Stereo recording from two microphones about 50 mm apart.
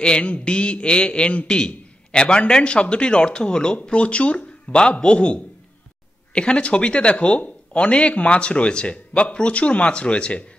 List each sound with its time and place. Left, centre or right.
0.0 s speech: centre